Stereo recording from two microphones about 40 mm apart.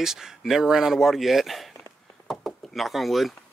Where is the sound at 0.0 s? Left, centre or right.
Centre.